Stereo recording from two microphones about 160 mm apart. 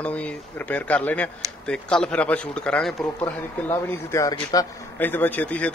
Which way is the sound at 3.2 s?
15° left (ahead or behind).